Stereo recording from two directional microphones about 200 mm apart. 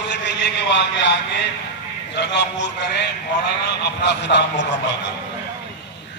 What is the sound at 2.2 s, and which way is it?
A man's voice, 60° left (ahead or behind).